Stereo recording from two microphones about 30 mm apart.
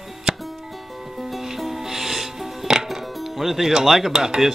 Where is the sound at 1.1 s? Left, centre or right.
Centre.